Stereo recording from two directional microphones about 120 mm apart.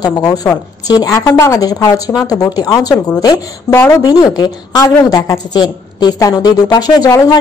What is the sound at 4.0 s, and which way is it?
A woman's voice, 30° left (ahead or behind).